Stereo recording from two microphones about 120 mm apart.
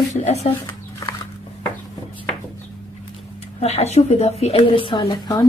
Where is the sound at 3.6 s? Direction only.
60° left (ahead or behind).